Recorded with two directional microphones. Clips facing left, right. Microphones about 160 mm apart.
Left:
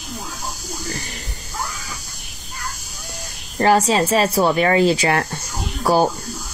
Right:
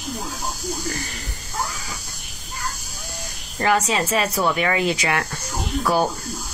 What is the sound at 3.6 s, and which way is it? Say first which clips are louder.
Speech: left 5 dB; 35° left (ahead or behind).